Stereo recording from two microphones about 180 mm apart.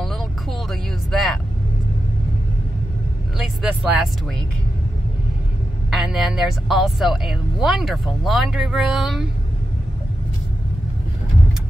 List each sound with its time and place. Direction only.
0.0 s vehicle: centre (ahead or behind)
3.3 s speech: 5° right (ahead or behind)
5.9 s a woman's voice: centre (ahead or behind)